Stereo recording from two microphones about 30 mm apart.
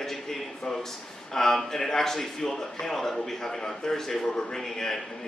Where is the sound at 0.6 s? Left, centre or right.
Centre.